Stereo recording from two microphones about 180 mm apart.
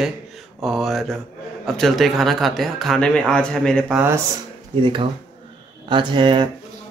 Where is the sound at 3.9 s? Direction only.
15° right (ahead or behind).